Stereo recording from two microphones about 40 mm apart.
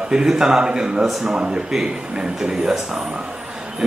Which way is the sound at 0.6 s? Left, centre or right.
Right.